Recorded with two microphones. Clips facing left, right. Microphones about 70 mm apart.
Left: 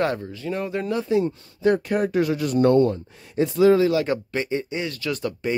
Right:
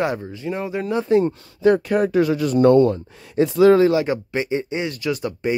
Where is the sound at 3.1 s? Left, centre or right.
Right.